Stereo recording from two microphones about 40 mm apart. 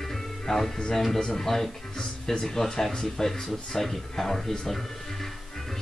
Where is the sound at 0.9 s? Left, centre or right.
Centre.